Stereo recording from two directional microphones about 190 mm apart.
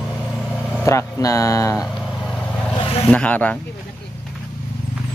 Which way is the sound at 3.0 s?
5° left (ahead or behind).